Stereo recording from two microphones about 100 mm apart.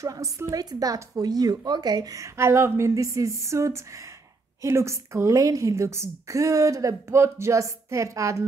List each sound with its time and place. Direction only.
0.0 s a woman's voice: 35° right (ahead or behind)